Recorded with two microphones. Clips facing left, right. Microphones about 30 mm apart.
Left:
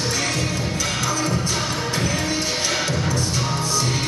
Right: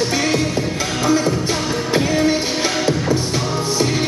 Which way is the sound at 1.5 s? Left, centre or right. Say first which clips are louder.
Right 3 dB; centre.